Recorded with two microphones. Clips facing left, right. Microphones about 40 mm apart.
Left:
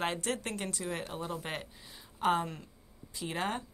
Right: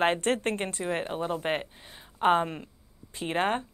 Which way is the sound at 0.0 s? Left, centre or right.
Right.